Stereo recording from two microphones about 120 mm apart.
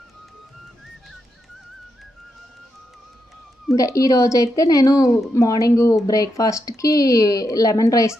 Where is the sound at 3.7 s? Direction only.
30° left (ahead or behind).